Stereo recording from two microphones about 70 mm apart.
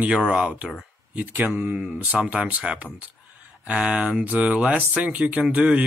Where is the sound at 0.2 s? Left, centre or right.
Centre.